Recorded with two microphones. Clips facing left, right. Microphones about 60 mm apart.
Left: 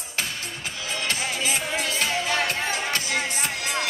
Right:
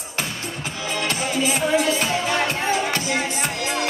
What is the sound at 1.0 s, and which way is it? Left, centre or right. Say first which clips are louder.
Music: right 5 dB; right.